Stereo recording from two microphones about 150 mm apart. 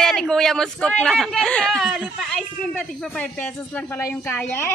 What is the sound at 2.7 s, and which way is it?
A woman's voice, 10° left (ahead or behind).